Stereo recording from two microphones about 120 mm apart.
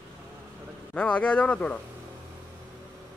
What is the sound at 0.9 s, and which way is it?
Speech, 10° left (ahead or behind).